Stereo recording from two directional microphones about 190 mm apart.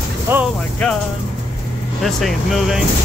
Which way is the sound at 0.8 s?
5° left (ahead or behind).